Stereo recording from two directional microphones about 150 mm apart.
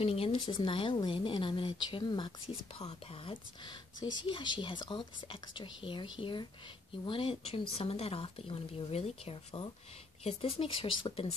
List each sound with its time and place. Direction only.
0.0 s speech: 40° left (ahead or behind)
2.8 s speech: 40° left (ahead or behind)